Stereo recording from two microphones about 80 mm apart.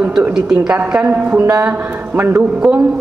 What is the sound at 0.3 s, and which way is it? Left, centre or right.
A woman's voice, centre.